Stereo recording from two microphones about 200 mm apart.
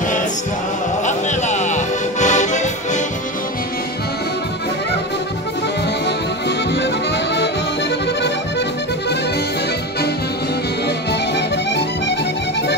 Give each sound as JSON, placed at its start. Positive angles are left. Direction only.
{"t": 1.0, "sound": "music", "side_deg": 35}
{"t": 6.7, "sound": "accordion", "side_deg": 60}
{"t": 11.1, "sound": "music", "side_deg": 60}